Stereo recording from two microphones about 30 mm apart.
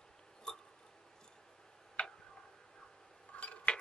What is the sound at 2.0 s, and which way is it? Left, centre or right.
Tick-tock, left.